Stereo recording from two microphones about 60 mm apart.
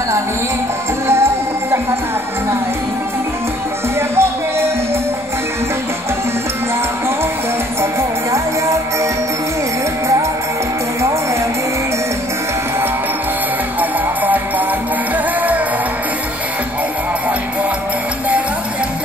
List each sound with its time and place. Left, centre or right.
1.0 s music: right
4.1 s music: right
7.8 s music: right
13.7 s music: right